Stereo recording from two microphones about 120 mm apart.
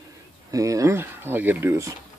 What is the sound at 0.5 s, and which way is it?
Speech, 25° right (ahead or behind).